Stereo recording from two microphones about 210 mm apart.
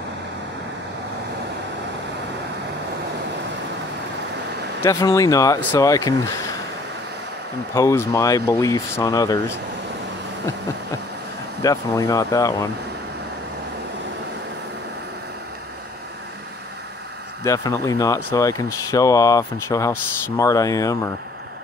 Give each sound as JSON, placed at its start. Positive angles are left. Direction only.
{"t": 4.8, "sound": "speech", "side_deg": 15}
{"t": 7.7, "sound": "speech", "side_deg": 15}
{"t": 11.6, "sound": "speech", "side_deg": 15}
{"t": 17.4, "sound": "speech", "side_deg": 15}